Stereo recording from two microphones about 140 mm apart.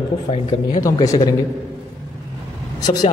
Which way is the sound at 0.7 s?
25° left (ahead or behind).